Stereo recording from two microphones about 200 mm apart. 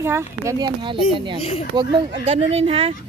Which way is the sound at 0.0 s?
15° right (ahead or behind).